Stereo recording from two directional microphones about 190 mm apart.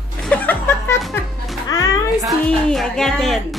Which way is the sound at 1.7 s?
20° left (ahead or behind).